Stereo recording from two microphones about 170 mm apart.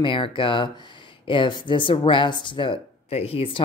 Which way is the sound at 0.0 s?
30° left (ahead or behind).